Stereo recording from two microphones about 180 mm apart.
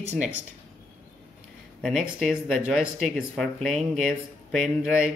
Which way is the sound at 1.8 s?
Centre (ahead or behind).